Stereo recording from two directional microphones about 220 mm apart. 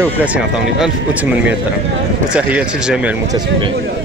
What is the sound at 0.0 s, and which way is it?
Speech, 5° right (ahead or behind).